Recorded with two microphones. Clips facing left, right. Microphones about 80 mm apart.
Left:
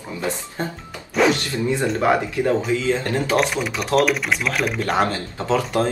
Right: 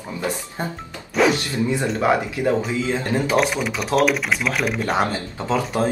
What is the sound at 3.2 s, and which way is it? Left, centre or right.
Speech, centre.